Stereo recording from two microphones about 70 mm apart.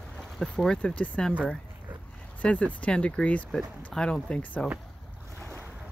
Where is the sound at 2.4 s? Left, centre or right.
Centre.